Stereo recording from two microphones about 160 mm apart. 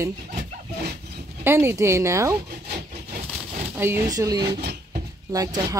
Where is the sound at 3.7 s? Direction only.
15° right (ahead or behind).